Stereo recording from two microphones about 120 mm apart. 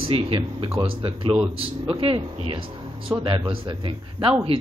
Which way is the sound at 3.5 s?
45° right (ahead or behind).